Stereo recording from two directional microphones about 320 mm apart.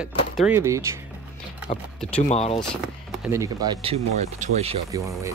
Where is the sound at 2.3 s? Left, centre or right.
Centre.